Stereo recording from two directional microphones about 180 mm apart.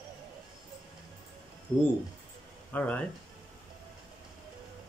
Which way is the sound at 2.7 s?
10° left (ahead or behind).